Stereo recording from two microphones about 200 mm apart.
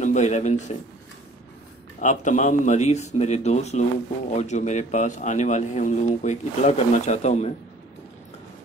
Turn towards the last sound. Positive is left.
turn(degrees=35)  # may be behind; listen again after turning